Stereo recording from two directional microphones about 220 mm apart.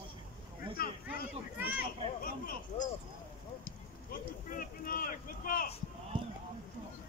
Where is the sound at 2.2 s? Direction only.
40° left (ahead or behind).